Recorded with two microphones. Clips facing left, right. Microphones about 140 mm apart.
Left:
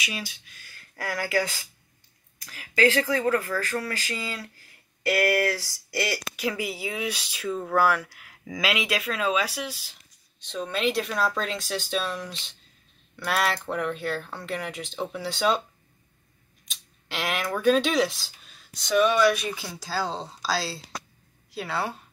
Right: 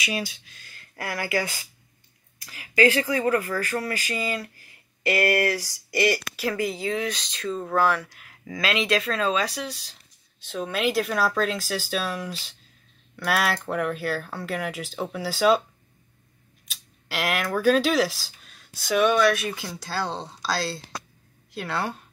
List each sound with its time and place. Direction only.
0.7 s speech: 15° right (ahead or behind)
6.4 s speech: 10° left (ahead or behind)
16.6 s speech: 5° right (ahead or behind)